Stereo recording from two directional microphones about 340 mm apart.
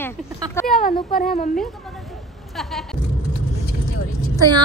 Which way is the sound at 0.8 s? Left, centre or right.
Left.